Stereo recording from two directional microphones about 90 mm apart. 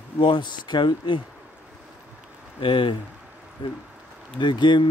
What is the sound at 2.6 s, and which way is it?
Speech, 75° left (ahead or behind).